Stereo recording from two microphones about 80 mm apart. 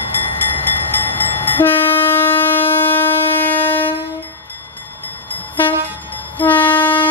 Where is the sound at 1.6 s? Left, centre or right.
Left.